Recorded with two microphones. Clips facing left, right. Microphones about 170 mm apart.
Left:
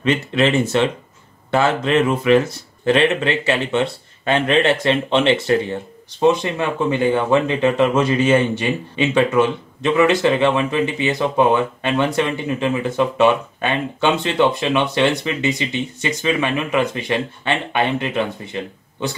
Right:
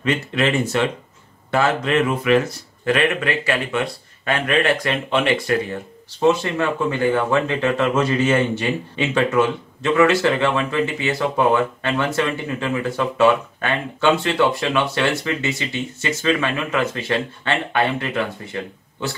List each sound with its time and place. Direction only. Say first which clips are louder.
0.0 s speech: left 3 dB; 25° left (ahead or behind)